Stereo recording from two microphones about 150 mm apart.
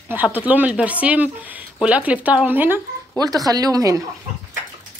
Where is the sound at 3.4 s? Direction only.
25° right (ahead or behind).